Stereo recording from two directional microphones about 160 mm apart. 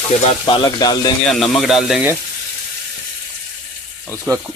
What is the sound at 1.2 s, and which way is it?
Speech, centre (ahead or behind).